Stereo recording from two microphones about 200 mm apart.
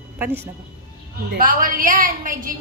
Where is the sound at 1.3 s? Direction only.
45° right (ahead or behind).